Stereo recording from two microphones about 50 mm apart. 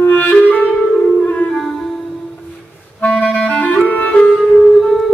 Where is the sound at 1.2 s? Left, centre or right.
Left.